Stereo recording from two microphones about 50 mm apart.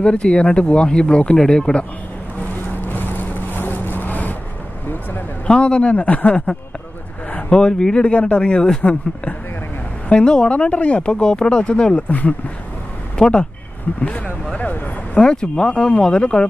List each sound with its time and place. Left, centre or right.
0.0 s speech: centre
2.9 s vehicle: left
5.5 s speech: left
12.1 s speech: left
13.2 s speech: centre
14.0 s speech: left